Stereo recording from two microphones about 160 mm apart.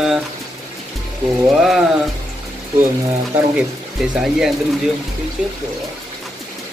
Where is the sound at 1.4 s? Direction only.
Centre (ahead or behind).